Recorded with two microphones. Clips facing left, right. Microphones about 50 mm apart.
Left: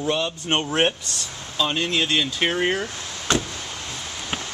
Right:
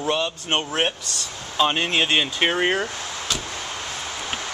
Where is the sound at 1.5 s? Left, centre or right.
Right; by 2.9 s centre.